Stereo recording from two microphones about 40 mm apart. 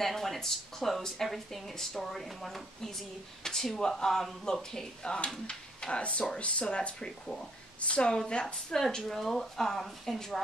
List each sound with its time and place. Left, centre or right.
0.0 s speech: centre; by 8.7 s left
8.7 s speech: centre